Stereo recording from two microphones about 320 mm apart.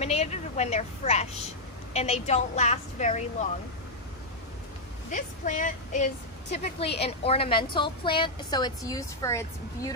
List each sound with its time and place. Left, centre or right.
0.0 s a woman's voice: centre
5.1 s a woman's voice: left